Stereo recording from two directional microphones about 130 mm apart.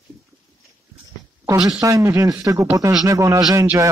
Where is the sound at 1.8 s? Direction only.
25° right (ahead or behind).